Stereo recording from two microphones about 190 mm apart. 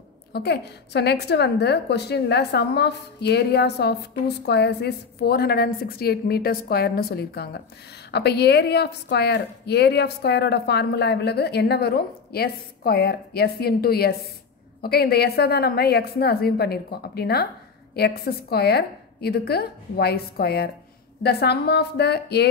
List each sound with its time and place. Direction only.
0.3 s a woman's voice: 60° left (ahead or behind)